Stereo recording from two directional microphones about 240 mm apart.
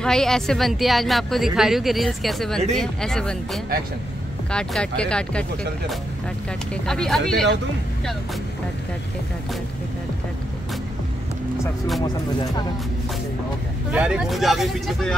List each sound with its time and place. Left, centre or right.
0.0 s a woman's voice: centre
13.9 s a woman's voice: centre